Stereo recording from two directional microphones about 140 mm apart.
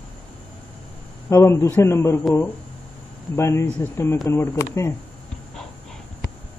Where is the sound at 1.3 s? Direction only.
20° left (ahead or behind).